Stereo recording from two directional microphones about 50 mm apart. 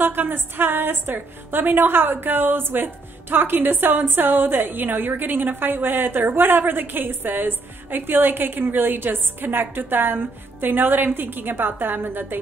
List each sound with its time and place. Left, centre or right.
0.0 s a woman's voice: right